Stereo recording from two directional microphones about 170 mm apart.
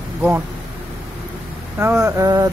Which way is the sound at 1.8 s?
15° right (ahead or behind).